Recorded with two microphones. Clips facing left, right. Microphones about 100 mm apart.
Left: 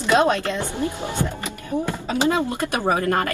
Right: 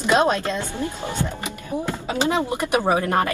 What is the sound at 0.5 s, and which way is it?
Speech, 15° left (ahead or behind).